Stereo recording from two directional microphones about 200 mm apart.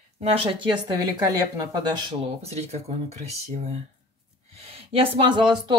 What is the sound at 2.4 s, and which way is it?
Speech, 30° right (ahead or behind).